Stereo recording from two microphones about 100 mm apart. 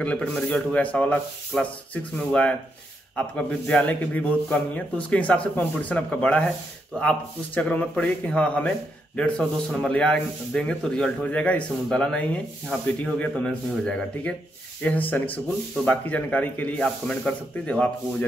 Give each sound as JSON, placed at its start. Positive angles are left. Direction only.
{"t": 0.0, "sound": "a man's voice", "side_deg": 10}
{"t": 3.2, "sound": "a man's voice", "side_deg": 10}